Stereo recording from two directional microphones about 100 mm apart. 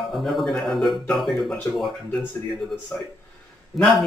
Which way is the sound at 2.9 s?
20° left (ahead or behind).